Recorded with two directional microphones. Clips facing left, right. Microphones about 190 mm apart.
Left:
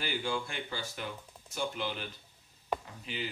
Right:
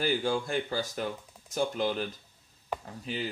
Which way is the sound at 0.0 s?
40° right (ahead or behind).